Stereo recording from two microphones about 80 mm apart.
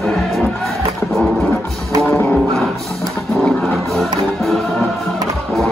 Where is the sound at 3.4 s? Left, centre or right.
Centre.